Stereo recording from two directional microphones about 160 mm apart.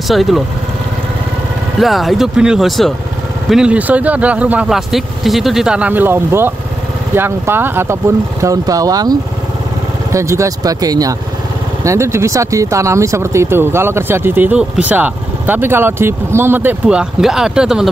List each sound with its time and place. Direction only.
0.1 s speech: centre (ahead or behind)
1.8 s speech: centre (ahead or behind)